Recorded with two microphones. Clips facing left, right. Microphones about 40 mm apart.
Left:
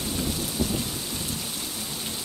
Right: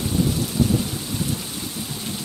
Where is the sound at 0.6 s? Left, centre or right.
Centre.